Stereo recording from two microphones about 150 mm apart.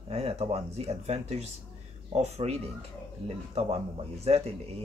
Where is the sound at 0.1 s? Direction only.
40° right (ahead or behind).